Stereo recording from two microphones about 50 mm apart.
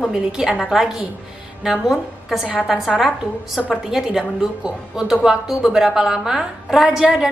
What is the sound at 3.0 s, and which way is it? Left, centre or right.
A woman's voice, centre.